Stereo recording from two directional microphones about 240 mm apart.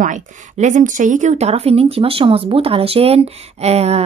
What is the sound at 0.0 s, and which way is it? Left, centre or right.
Speech, right.